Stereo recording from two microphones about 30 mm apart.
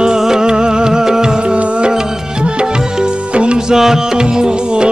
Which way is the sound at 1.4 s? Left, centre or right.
Right.